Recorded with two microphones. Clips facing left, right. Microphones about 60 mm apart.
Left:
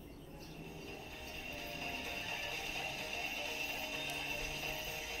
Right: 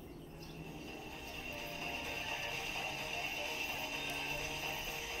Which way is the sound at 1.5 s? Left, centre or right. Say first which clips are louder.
Right 1 dB; right.